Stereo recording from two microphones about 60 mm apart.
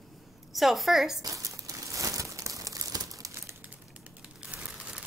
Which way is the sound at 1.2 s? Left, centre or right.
Right.